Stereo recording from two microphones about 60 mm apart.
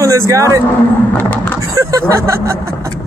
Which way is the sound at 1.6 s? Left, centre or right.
Right.